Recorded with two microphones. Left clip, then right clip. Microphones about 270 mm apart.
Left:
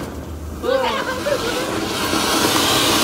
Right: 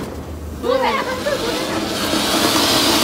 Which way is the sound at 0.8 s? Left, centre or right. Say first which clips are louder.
Right 2 dB; right.